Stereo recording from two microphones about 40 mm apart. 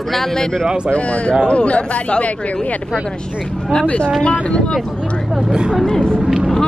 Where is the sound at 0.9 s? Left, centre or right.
Left.